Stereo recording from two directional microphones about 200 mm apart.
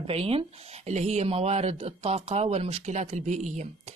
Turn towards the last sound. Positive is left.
turn(degrees=-35)  # may be behind; listen again after turning